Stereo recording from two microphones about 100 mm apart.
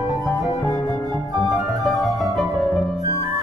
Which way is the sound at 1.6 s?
Centre (ahead or behind).